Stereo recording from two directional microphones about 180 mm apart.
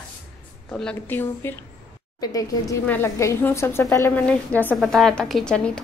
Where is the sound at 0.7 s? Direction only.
10° left (ahead or behind).